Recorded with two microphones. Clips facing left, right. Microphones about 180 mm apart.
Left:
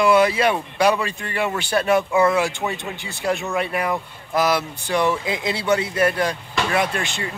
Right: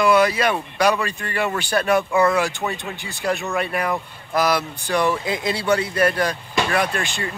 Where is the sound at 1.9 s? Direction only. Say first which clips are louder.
Even; 5° left (ahead or behind).